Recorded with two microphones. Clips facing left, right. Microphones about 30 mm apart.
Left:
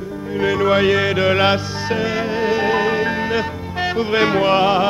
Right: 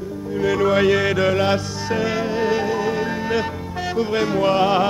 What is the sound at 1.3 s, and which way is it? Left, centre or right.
Music, left.